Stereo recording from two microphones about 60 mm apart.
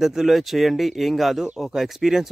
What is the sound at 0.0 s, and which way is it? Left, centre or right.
Speech, centre.